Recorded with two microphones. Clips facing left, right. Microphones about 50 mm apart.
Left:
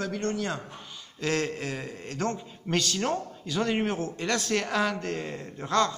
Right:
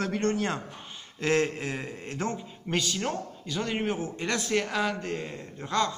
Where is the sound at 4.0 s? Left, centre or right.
Centre.